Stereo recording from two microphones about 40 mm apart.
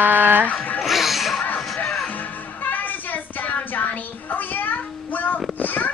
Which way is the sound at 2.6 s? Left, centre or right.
Left.